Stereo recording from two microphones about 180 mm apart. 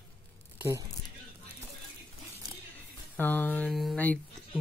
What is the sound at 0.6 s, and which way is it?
Speech, 15° right (ahead or behind).